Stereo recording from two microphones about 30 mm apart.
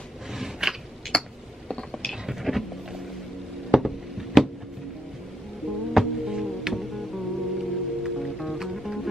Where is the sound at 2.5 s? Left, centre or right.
Centre.